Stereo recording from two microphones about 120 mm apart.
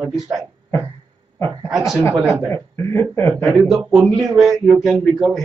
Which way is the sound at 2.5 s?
20° left (ahead or behind).